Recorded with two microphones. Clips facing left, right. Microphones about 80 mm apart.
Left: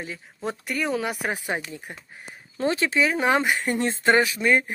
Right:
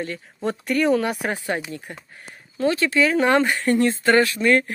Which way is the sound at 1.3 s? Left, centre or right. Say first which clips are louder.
Right 3 dB; centre.